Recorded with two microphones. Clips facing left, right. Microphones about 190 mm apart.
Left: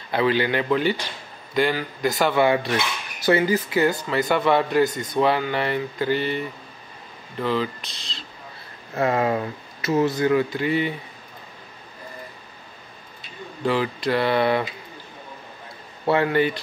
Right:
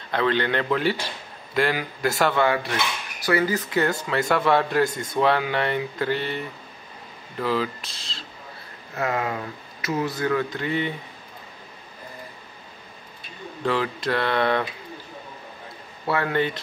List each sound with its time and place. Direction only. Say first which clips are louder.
0.1 s a man's voice: left 2 dB; 10° left (ahead or behind)
2.3 s speech: left 3 dB; 20° left (ahead or behind)
3.5 s a man's voice: left 3 dB; 5° left (ahead or behind)
8.9 s speech: left 5 dB; 30° left (ahead or behind)
10.5 s a man's voice: left 3 dB; 5° left (ahead or behind)
13.7 s speech: left 2 dB; 5° left (ahead or behind)
16.3 s speech: left 3 dB; 5° left (ahead or behind)